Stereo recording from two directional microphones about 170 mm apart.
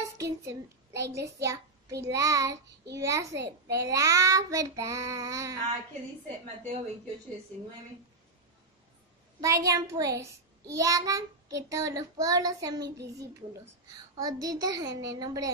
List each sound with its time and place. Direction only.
0.2 s a child's voice: 15° right (ahead or behind)
3.3 s a child's voice: 85° right
3.7 s a child's voice: 20° right (ahead or behind)
9.4 s a child's voice: 20° right (ahead or behind)
14.1 s a child's voice: 20° right (ahead or behind)